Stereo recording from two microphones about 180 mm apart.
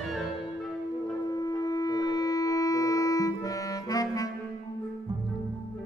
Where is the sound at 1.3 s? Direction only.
20° left (ahead or behind).